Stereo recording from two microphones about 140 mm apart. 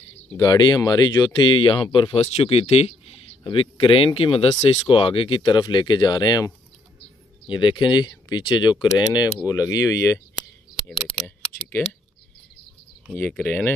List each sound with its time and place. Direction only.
0.4 s speech: 25° left (ahead or behind)
11.2 s computer keyboard: 10° left (ahead or behind)
13.1 s speech: 10° left (ahead or behind)